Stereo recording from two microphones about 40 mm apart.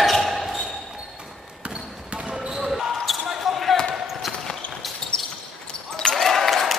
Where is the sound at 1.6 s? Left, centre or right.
Right.